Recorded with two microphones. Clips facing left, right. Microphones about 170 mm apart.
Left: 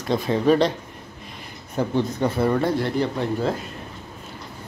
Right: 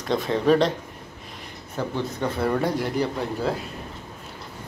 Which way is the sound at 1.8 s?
15° left (ahead or behind).